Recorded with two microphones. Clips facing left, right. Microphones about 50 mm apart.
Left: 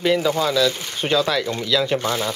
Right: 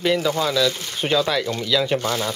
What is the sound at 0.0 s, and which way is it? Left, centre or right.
Speech, centre.